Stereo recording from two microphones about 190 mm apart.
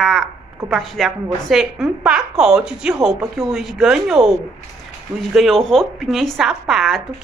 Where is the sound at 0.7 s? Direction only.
Centre (ahead or behind).